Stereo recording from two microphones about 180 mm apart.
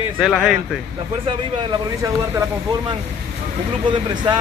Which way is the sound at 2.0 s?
15° right (ahead or behind).